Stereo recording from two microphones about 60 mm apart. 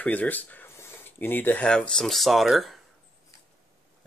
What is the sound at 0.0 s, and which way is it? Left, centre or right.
Speech, left.